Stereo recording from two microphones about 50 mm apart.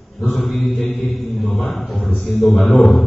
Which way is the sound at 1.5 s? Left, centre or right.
Centre.